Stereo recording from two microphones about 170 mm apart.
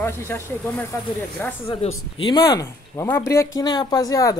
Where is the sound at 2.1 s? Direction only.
25° left (ahead or behind).